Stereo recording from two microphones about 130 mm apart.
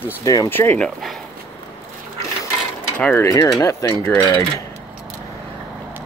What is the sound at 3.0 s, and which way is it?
Speech, 15° left (ahead or behind).